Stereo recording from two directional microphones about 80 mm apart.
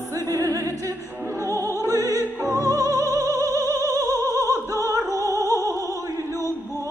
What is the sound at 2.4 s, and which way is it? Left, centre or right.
Opera, right.